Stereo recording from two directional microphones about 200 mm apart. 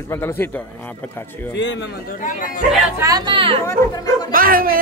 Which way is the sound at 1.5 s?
65° left (ahead or behind).